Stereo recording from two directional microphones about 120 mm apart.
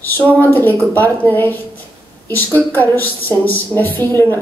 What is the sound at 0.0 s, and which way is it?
Speech, 15° left (ahead or behind).